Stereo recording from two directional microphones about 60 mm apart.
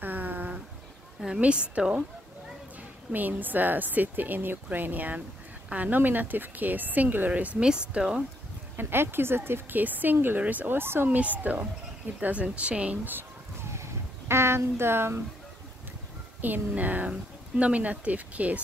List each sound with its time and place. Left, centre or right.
0.0 s a sound: right
1.2 s a woman's voice: centre
3.1 s speech: right
7.5 s a woman's voice: centre
8.7 s speech: right
11.1 s speech: right
13.6 s a sound: right
16.3 s speech: right